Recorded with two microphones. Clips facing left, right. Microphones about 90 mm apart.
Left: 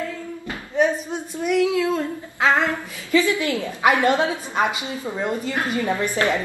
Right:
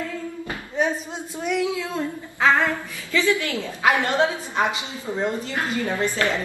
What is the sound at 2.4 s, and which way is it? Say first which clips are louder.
A woman's voice: even; 20° left (ahead or behind).